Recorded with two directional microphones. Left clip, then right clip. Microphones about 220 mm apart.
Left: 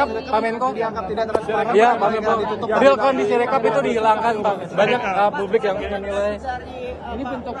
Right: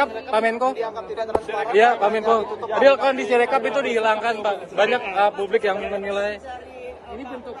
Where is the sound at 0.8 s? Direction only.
35° left (ahead or behind).